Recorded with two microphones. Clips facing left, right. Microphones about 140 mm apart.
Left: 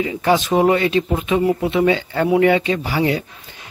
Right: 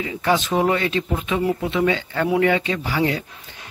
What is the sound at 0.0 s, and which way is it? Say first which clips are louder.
Speech: left 4 dB; 20° left (ahead or behind).